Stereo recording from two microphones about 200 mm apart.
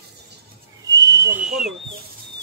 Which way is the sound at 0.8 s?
15° right (ahead or behind).